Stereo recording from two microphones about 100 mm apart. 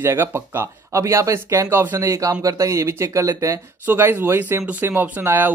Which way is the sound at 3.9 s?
20° right (ahead or behind).